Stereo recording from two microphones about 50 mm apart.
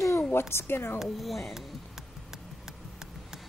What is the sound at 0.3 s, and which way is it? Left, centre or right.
Speech, left.